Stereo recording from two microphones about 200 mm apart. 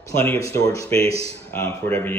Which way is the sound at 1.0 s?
30° right (ahead or behind).